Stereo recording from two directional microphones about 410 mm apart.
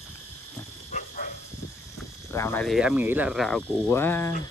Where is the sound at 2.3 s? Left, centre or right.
Centre.